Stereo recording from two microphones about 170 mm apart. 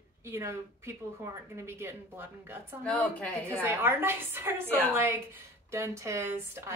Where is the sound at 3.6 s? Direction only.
15° right (ahead or behind).